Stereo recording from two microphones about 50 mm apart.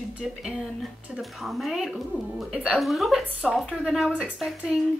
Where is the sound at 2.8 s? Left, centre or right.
Centre.